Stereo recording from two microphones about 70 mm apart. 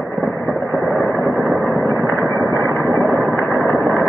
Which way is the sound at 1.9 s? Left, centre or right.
Right.